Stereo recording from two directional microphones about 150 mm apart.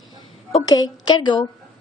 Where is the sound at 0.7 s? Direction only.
30° left (ahead or behind).